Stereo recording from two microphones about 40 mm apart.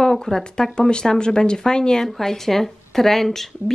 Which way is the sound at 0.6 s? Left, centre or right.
Left.